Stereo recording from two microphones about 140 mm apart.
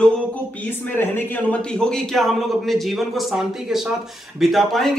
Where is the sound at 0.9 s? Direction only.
15° left (ahead or behind).